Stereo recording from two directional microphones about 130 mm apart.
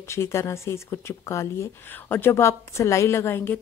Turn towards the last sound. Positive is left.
turn(degrees=15)  # may be behind; listen again after turning